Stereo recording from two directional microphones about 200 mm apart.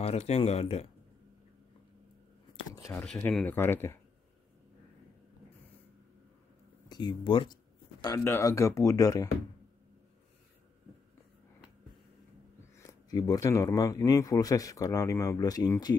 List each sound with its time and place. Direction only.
0.0 s speech: 30° left (ahead or behind)
2.5 s speech: 15° left (ahead or behind)
6.9 s speech: 20° left (ahead or behind)
12.7 s speech: 15° left (ahead or behind)